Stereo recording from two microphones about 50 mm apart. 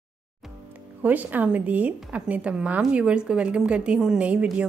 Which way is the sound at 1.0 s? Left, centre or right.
Right.